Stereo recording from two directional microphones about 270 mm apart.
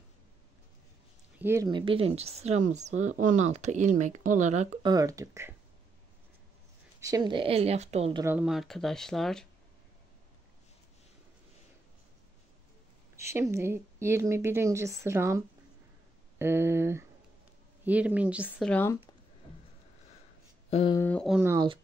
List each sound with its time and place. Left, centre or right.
1.4 s speech: centre
4.9 s speech: centre
7.0 s speech: centre
8.2 s speech: centre
13.1 s speech: centre
20.7 s speech: centre